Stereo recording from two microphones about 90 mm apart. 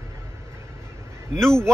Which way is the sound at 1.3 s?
5° left (ahead or behind).